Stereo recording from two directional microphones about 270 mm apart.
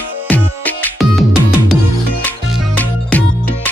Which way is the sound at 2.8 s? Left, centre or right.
Centre.